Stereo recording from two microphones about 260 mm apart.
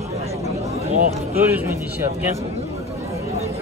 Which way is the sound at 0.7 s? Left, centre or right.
Right.